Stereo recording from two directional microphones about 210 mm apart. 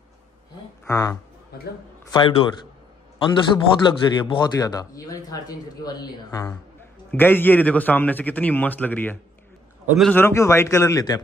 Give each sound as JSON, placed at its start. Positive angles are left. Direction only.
{"t": 0.8, "sound": "speech", "side_deg": 15}
{"t": 3.2, "sound": "a man's voice", "side_deg": 20}
{"t": 10.1, "sound": "a man's voice", "side_deg": 10}